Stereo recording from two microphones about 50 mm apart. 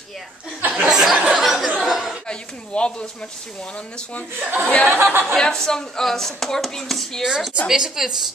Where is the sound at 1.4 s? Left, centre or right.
Centre.